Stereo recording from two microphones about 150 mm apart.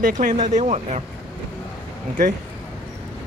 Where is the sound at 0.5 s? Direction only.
50° right (ahead or behind).